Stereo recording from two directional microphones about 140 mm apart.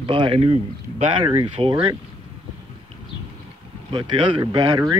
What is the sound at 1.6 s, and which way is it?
Speech, 35° right (ahead or behind).